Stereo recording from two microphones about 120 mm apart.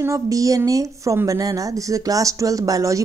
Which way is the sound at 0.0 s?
25° right (ahead or behind).